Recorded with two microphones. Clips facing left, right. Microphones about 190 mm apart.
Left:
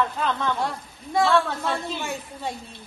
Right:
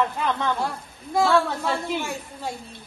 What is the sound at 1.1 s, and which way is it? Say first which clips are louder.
A woman's voice: right 1 dB; centre (ahead or behind).